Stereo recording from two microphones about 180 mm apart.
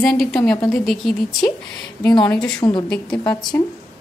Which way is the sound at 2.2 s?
5° left (ahead or behind).